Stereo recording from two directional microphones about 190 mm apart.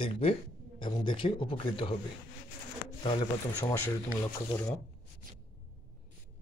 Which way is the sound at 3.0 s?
25° left (ahead or behind).